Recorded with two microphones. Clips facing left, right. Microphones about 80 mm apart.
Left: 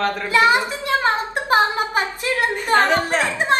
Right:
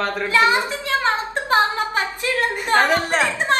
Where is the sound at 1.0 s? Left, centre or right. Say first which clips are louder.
Left 1 dB; centre.